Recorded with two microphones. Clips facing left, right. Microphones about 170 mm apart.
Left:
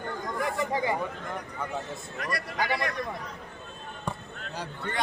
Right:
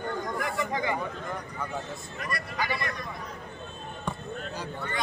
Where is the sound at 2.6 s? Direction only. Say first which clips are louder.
Left 3 dB; 60° left (ahead or behind).